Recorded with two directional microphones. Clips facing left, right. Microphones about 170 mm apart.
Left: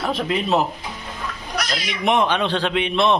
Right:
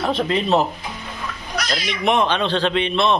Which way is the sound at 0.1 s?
5° left (ahead or behind).